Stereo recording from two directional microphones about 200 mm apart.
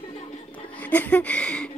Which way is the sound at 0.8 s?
10° left (ahead or behind).